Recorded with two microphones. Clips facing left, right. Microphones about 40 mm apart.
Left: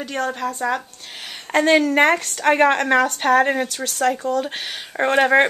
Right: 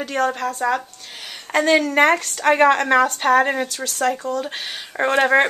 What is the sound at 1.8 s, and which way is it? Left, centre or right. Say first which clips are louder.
Speech: even; centre.